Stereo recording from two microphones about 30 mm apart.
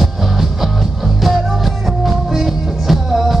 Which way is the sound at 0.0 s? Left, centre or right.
Centre.